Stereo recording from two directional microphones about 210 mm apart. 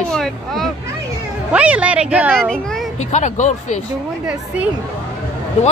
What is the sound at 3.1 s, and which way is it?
Speech, 35° left (ahead or behind).